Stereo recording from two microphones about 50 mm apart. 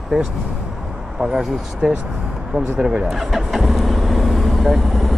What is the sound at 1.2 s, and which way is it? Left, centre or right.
Speech, centre.